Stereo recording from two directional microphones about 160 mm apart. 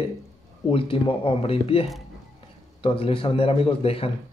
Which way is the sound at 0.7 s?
35° left (ahead or behind).